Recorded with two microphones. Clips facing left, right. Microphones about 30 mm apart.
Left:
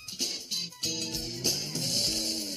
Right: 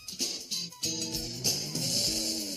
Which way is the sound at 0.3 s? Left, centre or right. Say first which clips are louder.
Left 2 dB; left.